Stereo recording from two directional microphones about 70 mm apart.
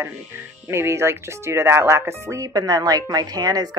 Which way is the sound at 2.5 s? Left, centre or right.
Right.